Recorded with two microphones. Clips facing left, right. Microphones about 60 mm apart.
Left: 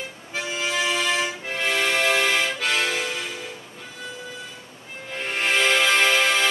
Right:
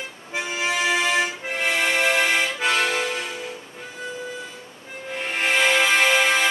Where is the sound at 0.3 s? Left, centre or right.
Right.